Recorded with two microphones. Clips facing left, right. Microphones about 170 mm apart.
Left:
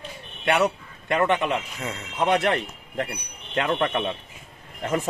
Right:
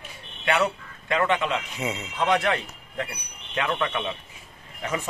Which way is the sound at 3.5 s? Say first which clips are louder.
Left 3 dB; 45° left (ahead or behind).